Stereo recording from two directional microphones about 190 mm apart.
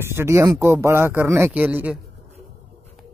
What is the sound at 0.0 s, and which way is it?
A man's voice, 15° right (ahead or behind).